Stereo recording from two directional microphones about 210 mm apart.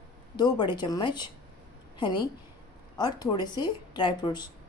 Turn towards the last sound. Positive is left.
turn(degrees=20)  # may be behind; listen again after turning